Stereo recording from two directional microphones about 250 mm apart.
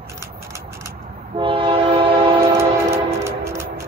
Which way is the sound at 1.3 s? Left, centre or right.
Right.